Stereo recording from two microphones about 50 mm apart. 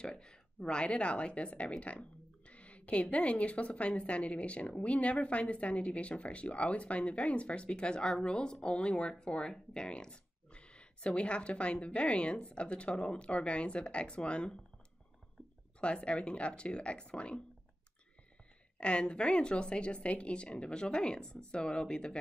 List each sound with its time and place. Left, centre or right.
0.0 s speech: centre
15.8 s speech: left
18.8 s speech: left